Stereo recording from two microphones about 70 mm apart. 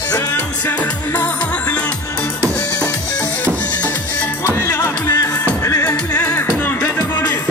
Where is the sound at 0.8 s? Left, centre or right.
Centre.